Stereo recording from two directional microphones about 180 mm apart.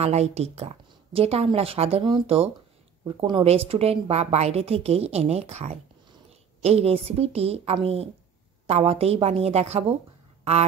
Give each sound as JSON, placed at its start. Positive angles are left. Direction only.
{"t": 0.0, "sound": "a woman's voice", "side_deg": -35}